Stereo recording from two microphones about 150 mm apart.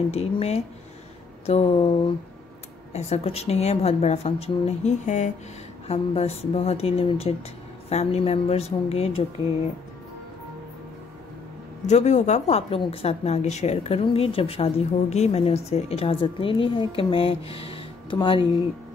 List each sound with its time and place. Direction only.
0.1 s a woman's voice: 45° left (ahead or behind)
2.9 s a woman's voice: 45° left (ahead or behind)
5.9 s a woman's voice: 40° left (ahead or behind)
11.8 s a woman's voice: 50° left (ahead or behind); by 18.5 s 35° left (ahead or behind)